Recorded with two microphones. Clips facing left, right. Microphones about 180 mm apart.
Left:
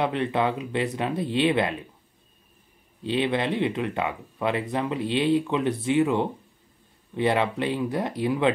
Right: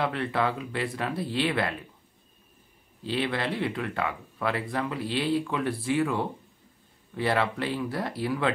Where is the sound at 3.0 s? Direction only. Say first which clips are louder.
Left 4 dB; 20° left (ahead or behind).